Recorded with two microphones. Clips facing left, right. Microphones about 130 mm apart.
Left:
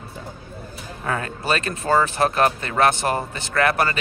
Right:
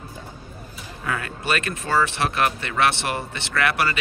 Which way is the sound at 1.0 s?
35° left (ahead or behind).